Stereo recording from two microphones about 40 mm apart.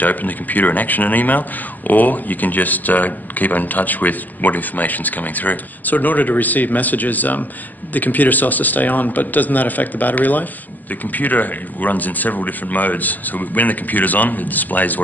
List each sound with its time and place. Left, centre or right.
0.0 s a man's voice: left